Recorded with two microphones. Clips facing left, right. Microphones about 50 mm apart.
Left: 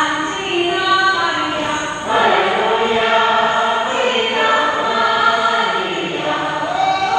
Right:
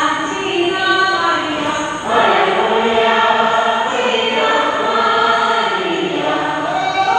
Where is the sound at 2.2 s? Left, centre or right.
Right.